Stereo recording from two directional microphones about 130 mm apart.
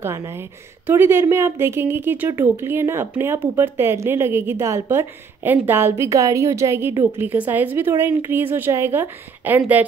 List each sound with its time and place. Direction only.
0.0 s a woman's voice: 20° right (ahead or behind)